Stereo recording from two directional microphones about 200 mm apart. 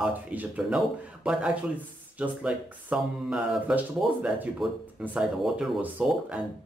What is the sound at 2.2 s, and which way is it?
Speech, 5° right (ahead or behind).